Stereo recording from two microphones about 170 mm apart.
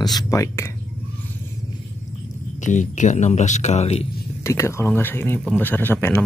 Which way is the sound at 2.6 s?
45° left (ahead or behind).